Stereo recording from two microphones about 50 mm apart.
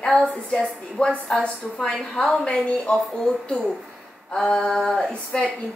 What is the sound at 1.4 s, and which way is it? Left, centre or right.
A woman's voice, centre.